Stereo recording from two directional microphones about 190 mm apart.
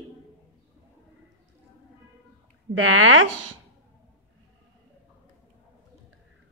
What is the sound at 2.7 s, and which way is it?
Speech, 90° right.